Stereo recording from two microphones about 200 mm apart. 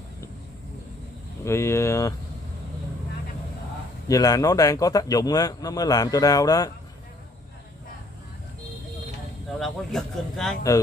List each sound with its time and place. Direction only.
1.4 s a man's voice: 15° left (ahead or behind)
4.1 s a man's voice: 20° left (ahead or behind)
9.5 s speech: centre (ahead or behind)
10.7 s a man's voice: 20° left (ahead or behind)